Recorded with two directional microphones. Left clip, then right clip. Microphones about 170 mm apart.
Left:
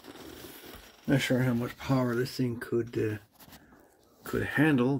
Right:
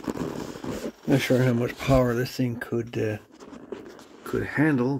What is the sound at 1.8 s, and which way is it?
Speech, 55° right (ahead or behind).